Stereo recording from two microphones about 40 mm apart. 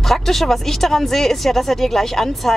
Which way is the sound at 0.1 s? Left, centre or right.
Centre.